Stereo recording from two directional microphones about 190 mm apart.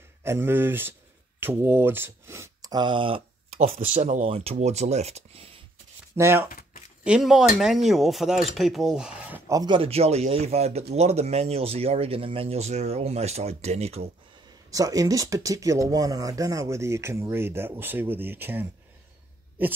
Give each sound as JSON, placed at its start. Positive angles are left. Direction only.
{"t": 0.2, "sound": "speech", "side_deg": -10}
{"t": 3.8, "sound": "speech", "side_deg": -40}
{"t": 6.1, "sound": "speech", "side_deg": -15}
{"t": 7.1, "sound": "speech", "side_deg": 0}
{"t": 9.6, "sound": "speech", "side_deg": -25}
{"t": 14.7, "sound": "speech", "side_deg": -20}